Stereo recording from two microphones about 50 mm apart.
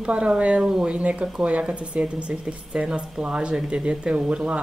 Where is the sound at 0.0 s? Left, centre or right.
Right.